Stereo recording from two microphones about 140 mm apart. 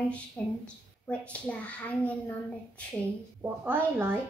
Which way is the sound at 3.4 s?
15° right (ahead or behind).